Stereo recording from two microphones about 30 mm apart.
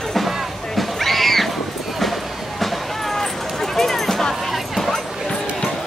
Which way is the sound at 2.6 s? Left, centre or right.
Centre.